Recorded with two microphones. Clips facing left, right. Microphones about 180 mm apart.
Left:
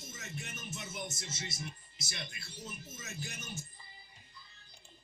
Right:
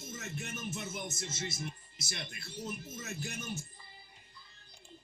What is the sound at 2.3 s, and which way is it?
Speech, 55° right (ahead or behind).